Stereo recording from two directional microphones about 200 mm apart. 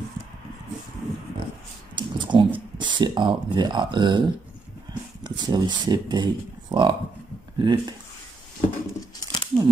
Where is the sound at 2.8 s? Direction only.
25° right (ahead or behind).